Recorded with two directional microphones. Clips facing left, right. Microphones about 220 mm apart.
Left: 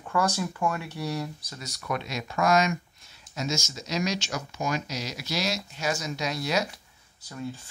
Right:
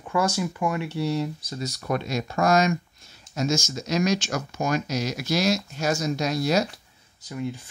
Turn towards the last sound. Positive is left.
turn(degrees=-15)  # may be behind; listen again after turning